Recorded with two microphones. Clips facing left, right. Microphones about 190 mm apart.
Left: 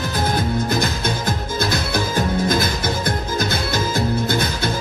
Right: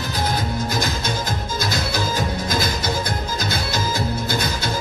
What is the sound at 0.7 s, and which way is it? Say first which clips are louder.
Music: left 3 dB; 55° left (ahead or behind).